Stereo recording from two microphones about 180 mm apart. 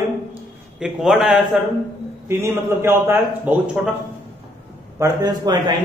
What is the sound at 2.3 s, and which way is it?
A man's voice, 15° right (ahead or behind).